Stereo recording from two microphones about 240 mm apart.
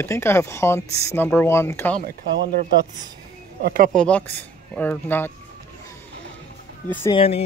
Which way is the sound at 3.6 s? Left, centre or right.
Right.